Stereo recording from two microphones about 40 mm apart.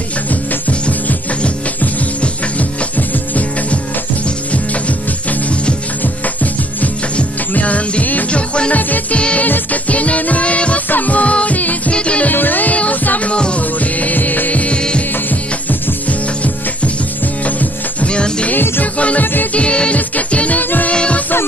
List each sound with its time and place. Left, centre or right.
7.5 s music: left
8.3 s music: left
10.9 s music: left
11.9 s music: left
12.3 s music: left
14.5 s music: left
18.0 s music: left
18.5 s music: left
18.9 s music: left
20.2 s music: left
20.9 s music: left